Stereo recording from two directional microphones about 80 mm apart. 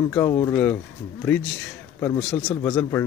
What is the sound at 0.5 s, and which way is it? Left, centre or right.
Speech, left.